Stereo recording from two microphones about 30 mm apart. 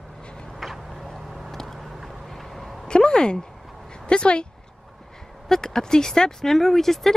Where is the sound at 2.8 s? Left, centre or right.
Left.